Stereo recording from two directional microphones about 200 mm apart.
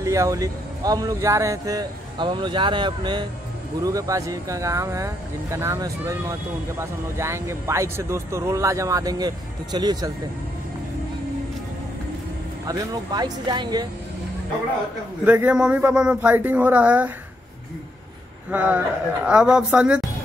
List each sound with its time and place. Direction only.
0.0 s speech: 15° right (ahead or behind)
12.6 s speech: 20° right (ahead or behind)
15.2 s speech: 10° right (ahead or behind)
18.5 s speech: 10° right (ahead or behind)